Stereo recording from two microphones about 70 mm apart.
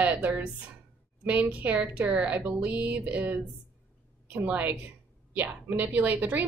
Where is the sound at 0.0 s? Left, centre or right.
Right.